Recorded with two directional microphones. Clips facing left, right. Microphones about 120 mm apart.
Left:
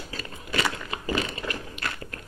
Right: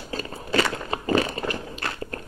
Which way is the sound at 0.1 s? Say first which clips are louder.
Right 8 dB; 35° right (ahead or behind).